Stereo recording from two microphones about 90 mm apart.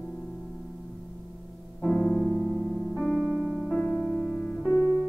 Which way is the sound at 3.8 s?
20° left (ahead or behind).